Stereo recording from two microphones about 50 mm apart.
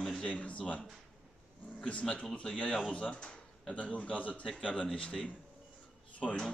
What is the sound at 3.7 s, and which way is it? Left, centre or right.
Speech, left.